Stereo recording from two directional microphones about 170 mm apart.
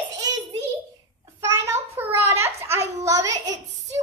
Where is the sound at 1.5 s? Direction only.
15° right (ahead or behind).